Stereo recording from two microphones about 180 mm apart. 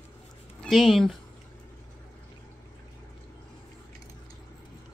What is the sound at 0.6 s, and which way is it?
Speech, centre (ahead or behind).